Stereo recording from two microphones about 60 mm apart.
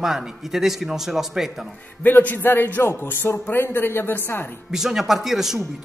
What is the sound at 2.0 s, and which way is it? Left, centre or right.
A woman's voice, left.